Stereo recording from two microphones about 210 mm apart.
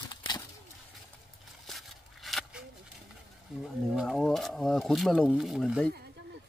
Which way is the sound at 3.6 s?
Centre (ahead or behind).